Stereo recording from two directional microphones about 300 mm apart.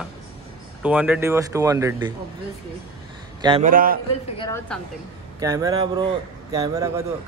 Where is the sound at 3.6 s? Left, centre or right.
Right.